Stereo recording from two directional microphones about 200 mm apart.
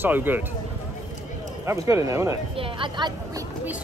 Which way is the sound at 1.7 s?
15° right (ahead or behind).